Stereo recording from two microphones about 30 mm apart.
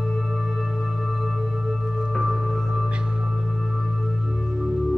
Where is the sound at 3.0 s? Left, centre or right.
Right.